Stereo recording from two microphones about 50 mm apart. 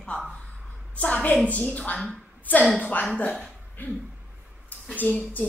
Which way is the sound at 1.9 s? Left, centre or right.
Centre.